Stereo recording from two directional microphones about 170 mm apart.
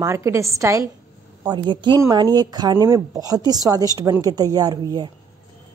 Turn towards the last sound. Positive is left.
turn(degrees=-25)  # may be behind; listen again after turning